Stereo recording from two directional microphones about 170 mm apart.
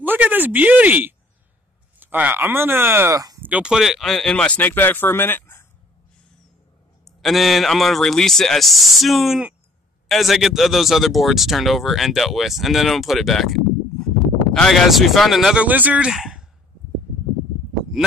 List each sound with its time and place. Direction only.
0.0 s speech: 10° right (ahead or behind)
3.4 s speech: 5° right (ahead or behind); by 5.7 s 15° left (ahead or behind)
7.1 s speech: centre (ahead or behind)